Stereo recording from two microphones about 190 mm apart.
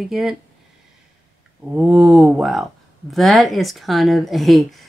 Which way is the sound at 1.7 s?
5° right (ahead or behind).